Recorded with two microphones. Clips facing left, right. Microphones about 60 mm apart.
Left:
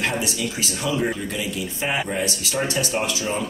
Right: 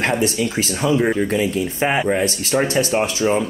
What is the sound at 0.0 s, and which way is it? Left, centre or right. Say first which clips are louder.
Speech: right 6 dB; right.